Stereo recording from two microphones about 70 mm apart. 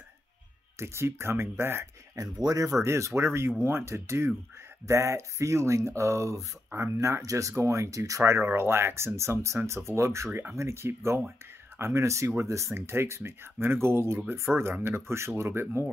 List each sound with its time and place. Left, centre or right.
0.7 s speech: right
2.1 s speech: right
2.8 s speech: right